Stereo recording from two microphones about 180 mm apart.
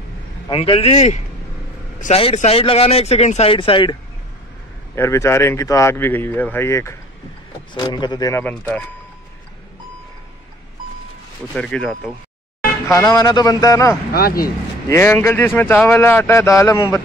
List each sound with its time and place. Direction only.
0.5 s speech: 30° left (ahead or behind)
4.9 s speech: 15° left (ahead or behind)
11.5 s speech: 5° left (ahead or behind)
12.8 s speech: 20° left (ahead or behind)
14.1 s speech: 55° left (ahead or behind)
14.9 s speech: 15° left (ahead or behind)